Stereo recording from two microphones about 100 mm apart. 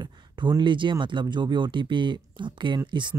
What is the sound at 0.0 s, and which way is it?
Speech, 45° right (ahead or behind).